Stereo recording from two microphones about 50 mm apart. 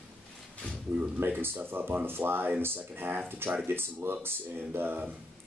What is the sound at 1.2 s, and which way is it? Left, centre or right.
Speech, right.